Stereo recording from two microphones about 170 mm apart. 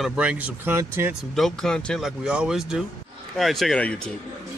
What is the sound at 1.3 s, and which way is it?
Speech, centre (ahead or behind).